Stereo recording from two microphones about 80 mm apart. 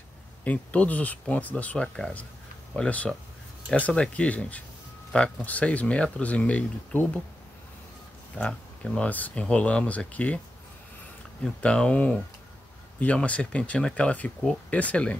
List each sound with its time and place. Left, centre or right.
0.4 s speech: centre
8.4 s speech: centre
11.4 s speech: centre